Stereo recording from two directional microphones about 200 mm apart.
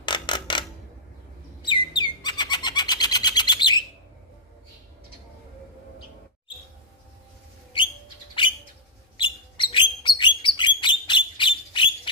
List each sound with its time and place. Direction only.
0.0 s mechanisms: 25° left (ahead or behind)
1.6 s bird: 20° left (ahead or behind)
9.1 s bird: 25° left (ahead or behind)